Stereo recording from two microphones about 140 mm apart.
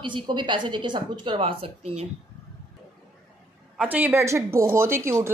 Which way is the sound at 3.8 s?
10° right (ahead or behind).